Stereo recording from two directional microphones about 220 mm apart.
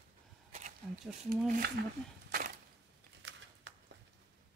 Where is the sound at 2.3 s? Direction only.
40° right (ahead or behind).